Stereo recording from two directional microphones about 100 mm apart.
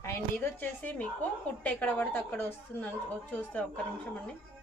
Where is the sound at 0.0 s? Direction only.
25° left (ahead or behind).